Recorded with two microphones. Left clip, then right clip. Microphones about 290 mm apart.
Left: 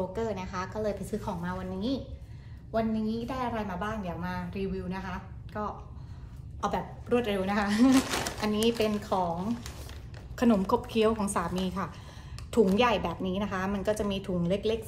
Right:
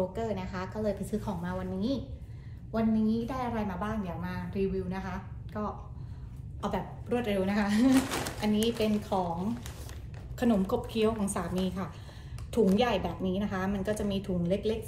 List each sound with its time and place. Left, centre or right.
0.1 s a woman's voice: centre
10.3 s a woman's voice: left